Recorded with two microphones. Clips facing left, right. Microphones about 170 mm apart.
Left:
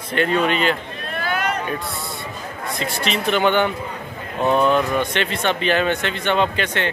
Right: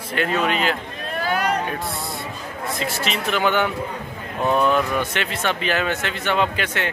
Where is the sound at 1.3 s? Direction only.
35° right (ahead or behind).